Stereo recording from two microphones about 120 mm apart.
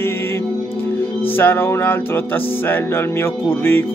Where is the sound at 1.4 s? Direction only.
15° left (ahead or behind).